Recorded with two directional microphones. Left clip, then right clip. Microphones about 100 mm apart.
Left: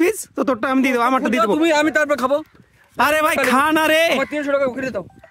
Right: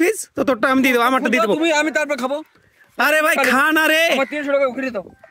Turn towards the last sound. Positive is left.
turn(degrees=25)  # may be behind; listen again after turning